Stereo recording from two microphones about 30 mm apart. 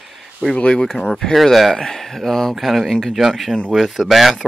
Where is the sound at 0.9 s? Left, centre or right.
Centre.